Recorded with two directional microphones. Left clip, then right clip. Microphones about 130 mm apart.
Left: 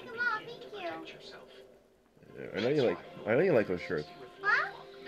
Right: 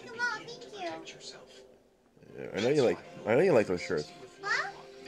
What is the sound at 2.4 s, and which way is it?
Speech, 30° right (ahead or behind).